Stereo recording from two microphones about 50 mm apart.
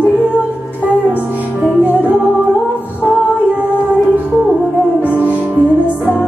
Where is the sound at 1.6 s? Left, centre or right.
Right.